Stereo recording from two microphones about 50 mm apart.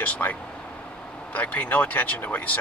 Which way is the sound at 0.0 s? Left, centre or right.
Left.